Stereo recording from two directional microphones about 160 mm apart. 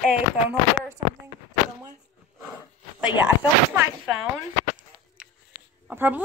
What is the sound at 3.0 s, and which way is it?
Speech, 10° right (ahead or behind).